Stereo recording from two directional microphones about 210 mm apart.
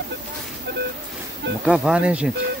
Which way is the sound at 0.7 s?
50° right (ahead or behind).